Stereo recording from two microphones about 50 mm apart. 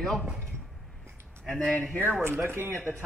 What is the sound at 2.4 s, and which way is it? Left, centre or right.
Speech, right.